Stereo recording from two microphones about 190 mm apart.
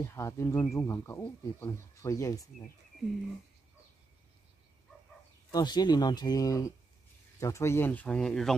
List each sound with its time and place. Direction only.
0.0 s speech: 15° left (ahead or behind)
5.5 s speech: 20° left (ahead or behind); by 8.5 s 5° left (ahead or behind)